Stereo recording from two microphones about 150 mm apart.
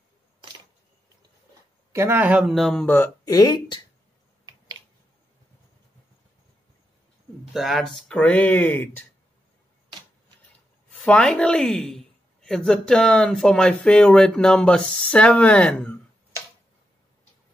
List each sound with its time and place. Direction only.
1.9 s speech: 15° right (ahead or behind); by 2.9 s centre (ahead or behind)
2.9 s speech: 20° left (ahead or behind)
7.5 s speech: centre (ahead or behind)
11.0 s a woman's voice: 5° left (ahead or behind)